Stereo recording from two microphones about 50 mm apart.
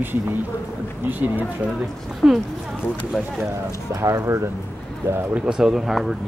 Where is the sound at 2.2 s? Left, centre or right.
Centre.